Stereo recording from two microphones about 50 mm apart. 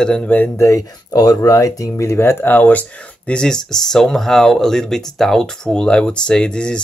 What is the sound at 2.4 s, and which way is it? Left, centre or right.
Speech, left.